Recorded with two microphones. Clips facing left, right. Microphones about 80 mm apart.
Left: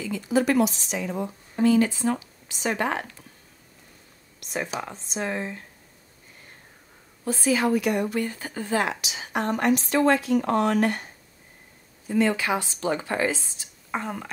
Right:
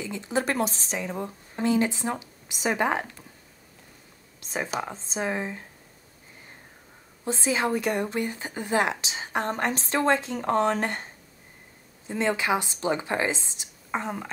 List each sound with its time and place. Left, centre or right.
0.0 s a woman's voice: right
1.6 s speech: right
5.2 s speech: centre
7.2 s speech: right
8.2 s speech: centre
9.0 s a woman's voice: right
12.1 s speech: right
13.9 s speech: centre